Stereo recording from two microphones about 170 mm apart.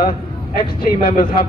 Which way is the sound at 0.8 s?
60° left (ahead or behind).